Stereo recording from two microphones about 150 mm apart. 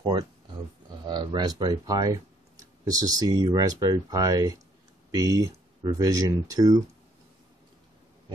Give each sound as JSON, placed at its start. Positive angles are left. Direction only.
{"t": 0.0, "sound": "speech", "side_deg": -30}